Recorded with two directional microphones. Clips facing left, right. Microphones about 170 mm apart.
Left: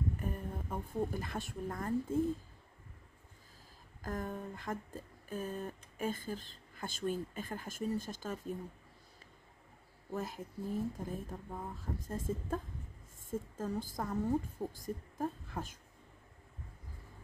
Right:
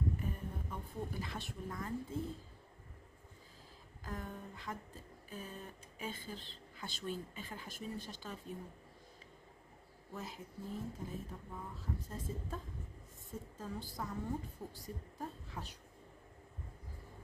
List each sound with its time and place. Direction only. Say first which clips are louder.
0.2 s a woman's voice: left 3 dB; 50° left (ahead or behind)
4.0 s speech: left 6 dB; 45° left (ahead or behind)
10.1 s speech: left 7 dB; 50° left (ahead or behind)